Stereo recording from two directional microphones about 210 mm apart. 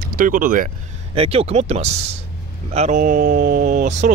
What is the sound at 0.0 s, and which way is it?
Speech, 45° right (ahead or behind).